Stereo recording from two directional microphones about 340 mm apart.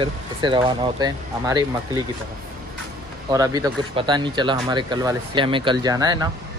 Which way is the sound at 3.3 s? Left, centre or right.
Centre.